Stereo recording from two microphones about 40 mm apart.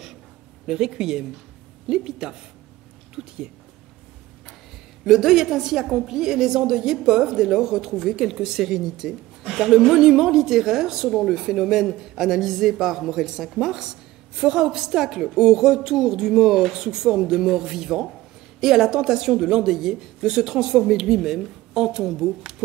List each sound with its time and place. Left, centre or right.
0.7 s a woman's voice: centre
5.0 s a woman's voice: centre